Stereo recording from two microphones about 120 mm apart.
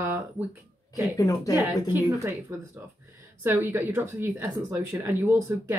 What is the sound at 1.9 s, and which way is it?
A woman's voice, 25° right (ahead or behind).